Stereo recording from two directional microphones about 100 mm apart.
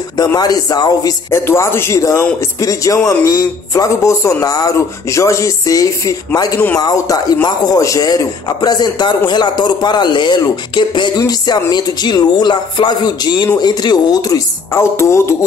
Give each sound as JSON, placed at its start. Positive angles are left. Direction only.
{"t": 0.4, "sound": "speech", "side_deg": 40}
{"t": 1.3, "sound": "a man's voice", "side_deg": 25}
{"t": 14.7, "sound": "a man's voice", "side_deg": 30}